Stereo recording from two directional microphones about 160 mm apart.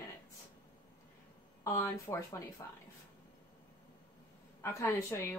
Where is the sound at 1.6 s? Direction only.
20° left (ahead or behind).